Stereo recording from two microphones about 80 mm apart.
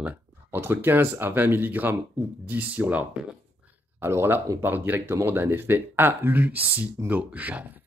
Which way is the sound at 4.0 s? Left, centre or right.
Right.